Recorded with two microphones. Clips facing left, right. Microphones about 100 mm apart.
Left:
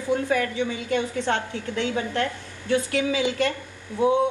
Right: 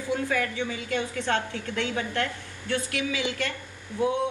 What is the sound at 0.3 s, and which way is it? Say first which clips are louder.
A woman's voice: left 4 dB; 25° left (ahead or behind).